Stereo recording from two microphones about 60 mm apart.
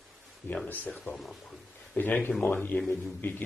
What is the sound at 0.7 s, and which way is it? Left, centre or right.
Speech, left.